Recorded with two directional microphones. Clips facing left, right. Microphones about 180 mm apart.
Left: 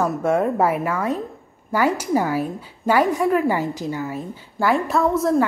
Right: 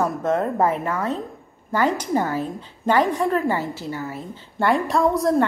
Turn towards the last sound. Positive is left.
turn(degrees=0)  # may be behind; listen again after turning